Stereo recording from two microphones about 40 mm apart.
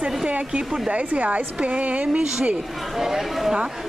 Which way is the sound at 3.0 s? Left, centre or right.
Centre.